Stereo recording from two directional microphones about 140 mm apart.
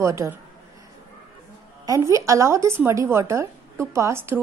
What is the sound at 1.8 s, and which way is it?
A woman's voice, 20° right (ahead or behind).